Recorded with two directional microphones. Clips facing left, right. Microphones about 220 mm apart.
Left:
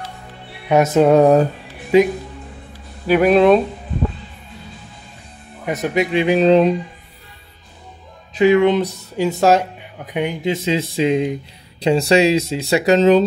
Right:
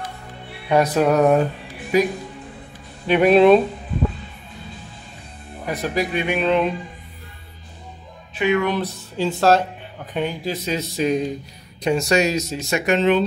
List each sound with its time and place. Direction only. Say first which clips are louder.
0.7 s speech: left 4 dB; 20° left (ahead or behind)
3.1 s speech: left 1 dB; centre (ahead or behind)
5.7 s speech: left 4 dB; 20° left (ahead or behind)
6.2 s speech: left 8 dB; 35° left (ahead or behind)
8.4 s speech: left 7 dB; 35° left (ahead or behind)
8.6 s speech: left 7 dB; 15° left (ahead or behind); by 13.2 s 40° left (ahead or behind)